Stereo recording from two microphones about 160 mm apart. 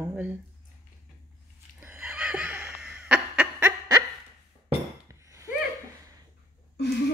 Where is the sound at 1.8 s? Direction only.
10° right (ahead or behind).